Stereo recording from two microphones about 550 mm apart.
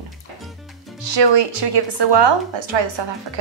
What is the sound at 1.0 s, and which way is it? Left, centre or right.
A woman's voice, right.